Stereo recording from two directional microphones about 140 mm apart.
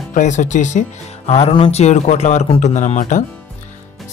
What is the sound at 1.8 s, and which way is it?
Speech, 55° left (ahead or behind).